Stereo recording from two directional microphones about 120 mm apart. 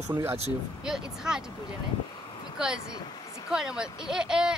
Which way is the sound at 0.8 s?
5° right (ahead or behind).